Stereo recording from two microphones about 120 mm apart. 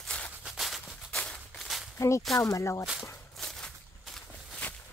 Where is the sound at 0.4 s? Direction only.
Centre (ahead or behind).